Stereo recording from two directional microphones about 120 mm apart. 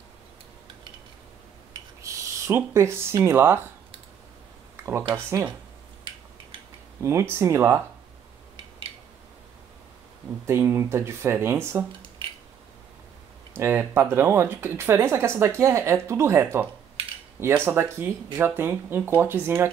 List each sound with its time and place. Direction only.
2.0 s speech: 25° right (ahead or behind)
5.1 s speech: 20° right (ahead or behind)
7.0 s speech: 20° right (ahead or behind)
10.4 s speech: 20° right (ahead or behind)
13.6 s speech: 20° right (ahead or behind)